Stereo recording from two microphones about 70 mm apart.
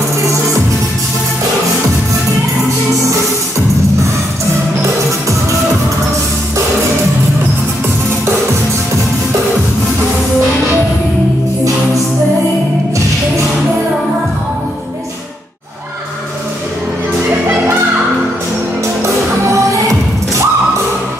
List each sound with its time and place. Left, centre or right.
19.4 s music: right